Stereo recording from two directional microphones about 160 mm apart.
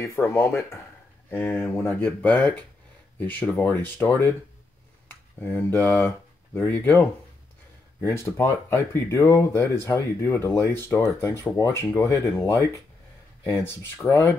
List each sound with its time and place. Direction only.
0.0 s speech: 20° left (ahead or behind)